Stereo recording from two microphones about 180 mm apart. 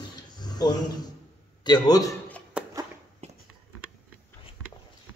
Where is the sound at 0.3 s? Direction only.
25° left (ahead or behind).